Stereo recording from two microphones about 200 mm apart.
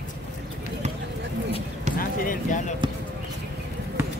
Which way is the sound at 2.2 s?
40° left (ahead or behind).